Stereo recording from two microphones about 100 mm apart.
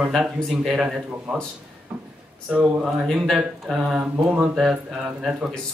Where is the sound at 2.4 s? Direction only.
5° right (ahead or behind).